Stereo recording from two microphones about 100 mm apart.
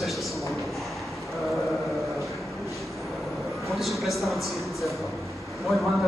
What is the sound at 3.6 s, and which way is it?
A man's voice, centre (ahead or behind).